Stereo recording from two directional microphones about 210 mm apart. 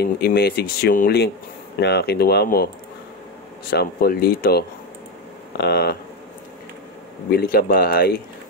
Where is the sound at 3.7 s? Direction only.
45° left (ahead or behind).